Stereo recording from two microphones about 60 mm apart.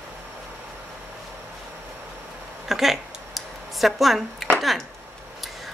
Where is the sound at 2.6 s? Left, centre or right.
Centre.